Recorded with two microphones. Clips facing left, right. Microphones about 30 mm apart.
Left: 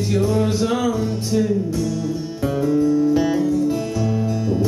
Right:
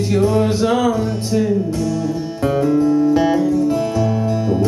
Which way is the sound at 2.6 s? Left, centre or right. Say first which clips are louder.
Right 2 dB; right.